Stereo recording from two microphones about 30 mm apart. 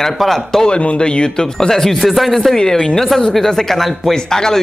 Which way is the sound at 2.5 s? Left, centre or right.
Left.